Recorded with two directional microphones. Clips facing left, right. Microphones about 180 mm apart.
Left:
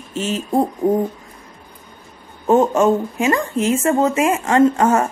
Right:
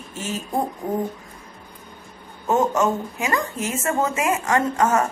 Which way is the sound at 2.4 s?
25° left (ahead or behind).